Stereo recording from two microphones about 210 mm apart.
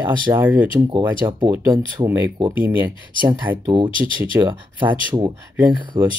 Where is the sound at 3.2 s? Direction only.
10° right (ahead or behind).